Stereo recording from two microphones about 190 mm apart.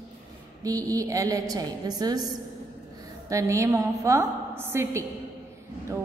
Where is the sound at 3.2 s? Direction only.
15° right (ahead or behind).